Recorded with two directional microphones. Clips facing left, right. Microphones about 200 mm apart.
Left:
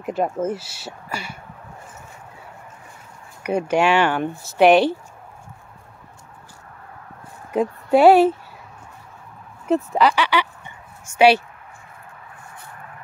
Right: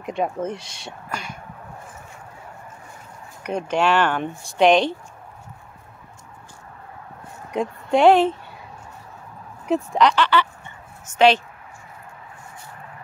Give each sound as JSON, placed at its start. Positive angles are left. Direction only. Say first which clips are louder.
{"t": 0.0, "sound": "speech", "louder": "left 2 dB", "side_deg": 5}
{"t": 3.4, "sound": "speech", "louder": "left 3 dB", "side_deg": 10}
{"t": 7.5, "sound": "speech", "louder": "left 3 dB", "side_deg": 5}
{"t": 9.7, "sound": "a woman's voice", "louder": "left 1 dB", "side_deg": 5}